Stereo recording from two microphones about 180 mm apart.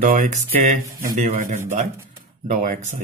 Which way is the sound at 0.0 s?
45° right (ahead or behind).